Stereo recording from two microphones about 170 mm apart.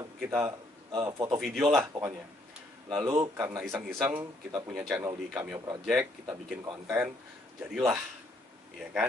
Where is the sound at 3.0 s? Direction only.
25° right (ahead or behind).